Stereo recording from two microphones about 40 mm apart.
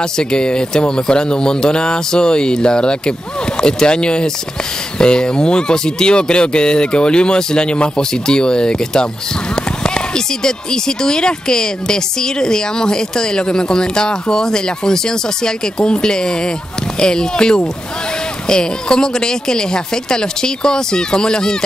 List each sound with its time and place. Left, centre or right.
0.0 s speech: centre